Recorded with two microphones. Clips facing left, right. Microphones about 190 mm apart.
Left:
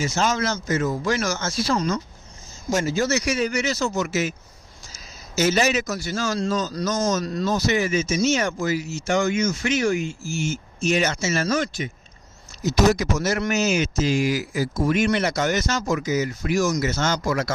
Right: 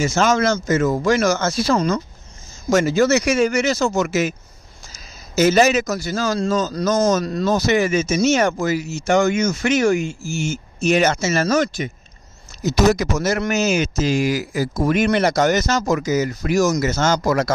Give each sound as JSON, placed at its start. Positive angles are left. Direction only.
{"t": 0.0, "sound": "speech", "side_deg": -90}
{"t": 1.1, "sound": "speech", "side_deg": -60}
{"t": 3.8, "sound": "speech", "side_deg": -90}
{"t": 5.4, "sound": "speech", "side_deg": -45}
{"t": 6.7, "sound": "speech", "side_deg": -60}
{"t": 12.6, "sound": "speech", "side_deg": -60}
{"t": 15.2, "sound": "speech", "side_deg": -40}